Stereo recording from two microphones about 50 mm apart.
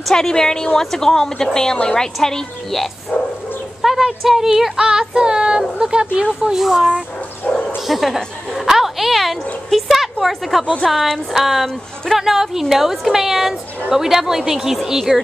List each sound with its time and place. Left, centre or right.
0.1 s a woman's voice: centre
3.8 s a woman's voice: centre
7.5 s dog: centre
7.8 s speech: centre
8.5 s a sound: centre
10.2 s a woman's voice: centre